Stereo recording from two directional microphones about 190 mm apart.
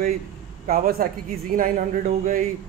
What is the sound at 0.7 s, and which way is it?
A man's voice, 50° right (ahead or behind).